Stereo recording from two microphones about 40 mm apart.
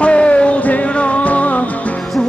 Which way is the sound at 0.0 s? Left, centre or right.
Left.